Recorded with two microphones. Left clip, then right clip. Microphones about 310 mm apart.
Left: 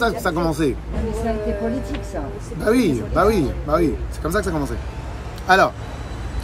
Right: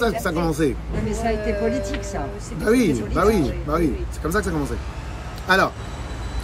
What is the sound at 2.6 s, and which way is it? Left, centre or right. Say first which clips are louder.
Speech: left 1 dB; centre.